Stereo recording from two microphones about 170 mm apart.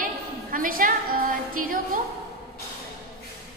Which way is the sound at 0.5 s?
55° right (ahead or behind).